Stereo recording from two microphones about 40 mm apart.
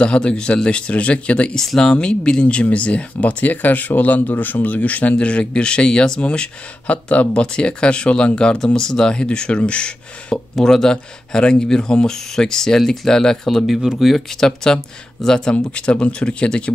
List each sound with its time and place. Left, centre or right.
0.0 s speech: left
1.8 s speech: centre
10.6 s speech: centre
15.5 s speech: left